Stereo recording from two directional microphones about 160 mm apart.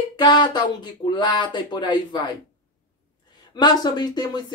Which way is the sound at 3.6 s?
25° left (ahead or behind).